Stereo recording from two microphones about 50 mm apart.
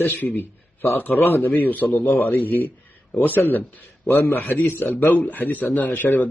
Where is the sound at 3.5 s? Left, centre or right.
Left.